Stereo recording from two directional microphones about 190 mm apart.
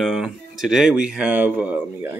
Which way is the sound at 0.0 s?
Centre (ahead or behind).